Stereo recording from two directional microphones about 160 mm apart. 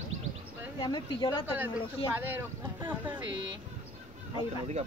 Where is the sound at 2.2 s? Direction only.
10° right (ahead or behind).